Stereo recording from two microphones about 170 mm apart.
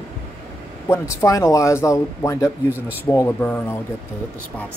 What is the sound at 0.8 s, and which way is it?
Speech, 15° left (ahead or behind).